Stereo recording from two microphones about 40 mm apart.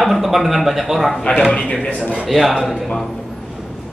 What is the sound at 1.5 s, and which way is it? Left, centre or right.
Speech, left.